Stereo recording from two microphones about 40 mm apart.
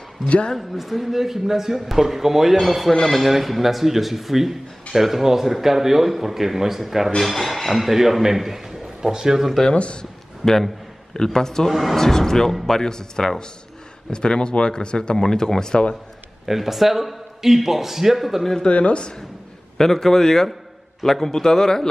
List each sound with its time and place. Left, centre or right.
0.6 s a man's voice: centre
7.2 s a man's voice: centre
9.8 s speech: left
10.4 s speech: centre
11.7 s speech: centre
12.0 s speech: centre
16.4 s a man's voice: centre
18.6 s speech: left
19.8 s speech: centre